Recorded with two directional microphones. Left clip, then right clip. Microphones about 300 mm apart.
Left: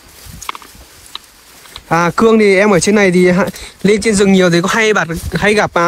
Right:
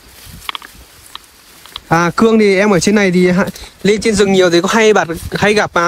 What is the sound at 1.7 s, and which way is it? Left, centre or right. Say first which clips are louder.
Speech: even; centre.